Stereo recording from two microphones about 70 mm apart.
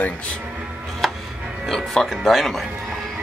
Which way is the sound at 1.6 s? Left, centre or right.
Centre.